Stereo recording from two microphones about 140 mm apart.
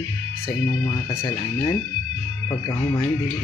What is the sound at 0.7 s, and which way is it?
Speech, 30° left (ahead or behind).